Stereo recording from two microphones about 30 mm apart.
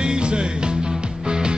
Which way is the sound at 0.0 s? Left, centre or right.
Right.